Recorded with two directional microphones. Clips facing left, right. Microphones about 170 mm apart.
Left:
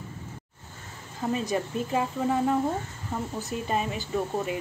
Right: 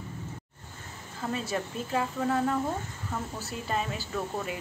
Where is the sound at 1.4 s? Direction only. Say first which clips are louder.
Left 4 dB; 15° left (ahead or behind).